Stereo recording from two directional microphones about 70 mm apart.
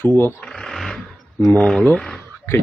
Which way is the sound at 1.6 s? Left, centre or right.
Centre.